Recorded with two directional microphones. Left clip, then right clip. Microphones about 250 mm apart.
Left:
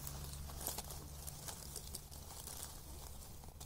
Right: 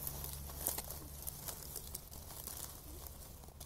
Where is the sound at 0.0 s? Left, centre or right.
Right.